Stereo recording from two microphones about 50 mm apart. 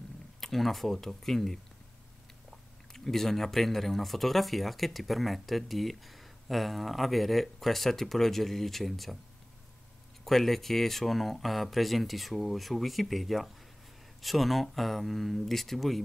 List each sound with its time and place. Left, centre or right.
0.4 s speech: centre
10.2 s speech: centre